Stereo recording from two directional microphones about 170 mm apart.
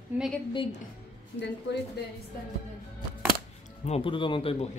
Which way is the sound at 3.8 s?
35° left (ahead or behind).